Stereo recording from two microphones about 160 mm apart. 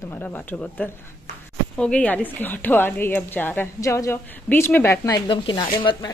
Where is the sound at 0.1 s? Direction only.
10° left (ahead or behind).